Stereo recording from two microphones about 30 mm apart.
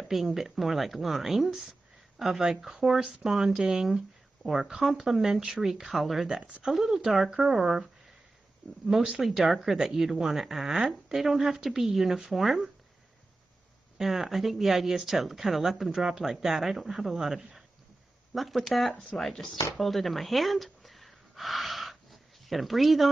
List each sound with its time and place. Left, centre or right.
0.2 s speech: centre
3.4 s speech: right
3.8 s a sound: centre
4.6 s speech: centre
5.9 s speech: centre
8.6 s speech: centre
9.2 s speech: centre
13.9 s speech: centre
19.8 s gasp: centre
22.5 s speech: centre